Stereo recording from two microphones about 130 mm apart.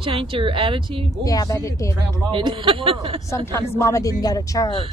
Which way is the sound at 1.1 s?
25° left (ahead or behind).